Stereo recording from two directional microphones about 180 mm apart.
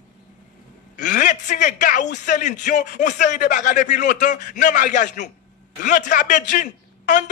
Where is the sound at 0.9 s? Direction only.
45° left (ahead or behind).